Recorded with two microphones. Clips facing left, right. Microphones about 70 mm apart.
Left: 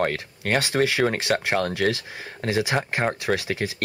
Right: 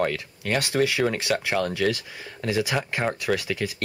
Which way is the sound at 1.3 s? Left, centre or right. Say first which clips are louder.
Left 1 dB; left.